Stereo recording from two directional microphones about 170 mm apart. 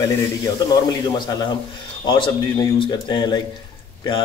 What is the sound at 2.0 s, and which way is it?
Speech, 30° left (ahead or behind).